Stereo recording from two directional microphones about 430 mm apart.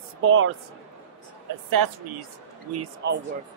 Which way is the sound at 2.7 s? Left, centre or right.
Right.